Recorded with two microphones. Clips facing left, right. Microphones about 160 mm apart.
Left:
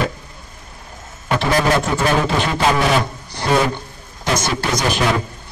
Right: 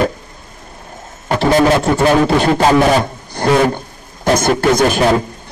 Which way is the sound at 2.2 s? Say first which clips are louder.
Right 6 dB; 40° right (ahead or behind).